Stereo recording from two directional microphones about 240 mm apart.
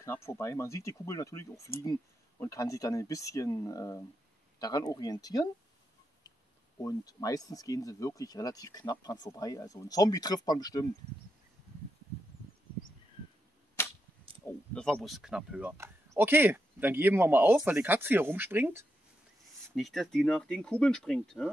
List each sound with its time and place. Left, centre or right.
0.0 s speech: centre
6.8 s speech: centre
13.8 s cap gun: centre
14.4 s speech: centre